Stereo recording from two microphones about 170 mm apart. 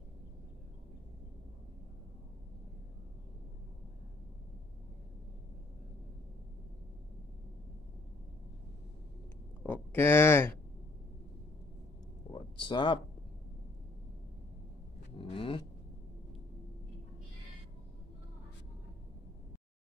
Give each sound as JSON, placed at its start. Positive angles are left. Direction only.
{"t": 9.6, "sound": "speech", "side_deg": 10}
{"t": 12.3, "sound": "a sound", "side_deg": 25}
{"t": 15.1, "sound": "vehicle", "side_deg": 30}